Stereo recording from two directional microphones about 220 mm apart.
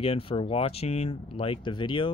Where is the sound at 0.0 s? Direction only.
25° left (ahead or behind).